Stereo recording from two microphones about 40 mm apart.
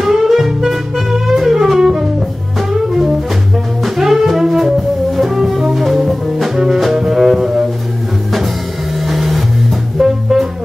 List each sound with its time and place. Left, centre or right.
0.0 s music: centre
3.8 s music: centre
9.0 s music: centre